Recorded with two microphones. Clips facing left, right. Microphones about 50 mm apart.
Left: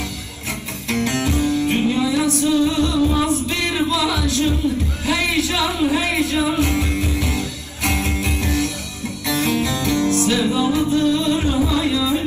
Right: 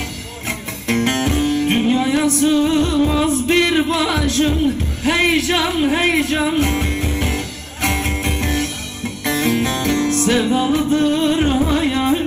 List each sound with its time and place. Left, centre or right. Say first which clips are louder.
0.8 s music: right 3 dB; right
1.8 s music: right 2 dB; right
3.3 s music: right 5 dB; right